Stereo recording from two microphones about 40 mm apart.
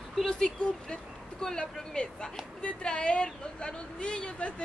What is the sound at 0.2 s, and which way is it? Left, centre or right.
A woman's voice, centre.